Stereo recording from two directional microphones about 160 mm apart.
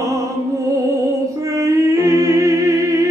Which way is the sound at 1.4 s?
20° right (ahead or behind).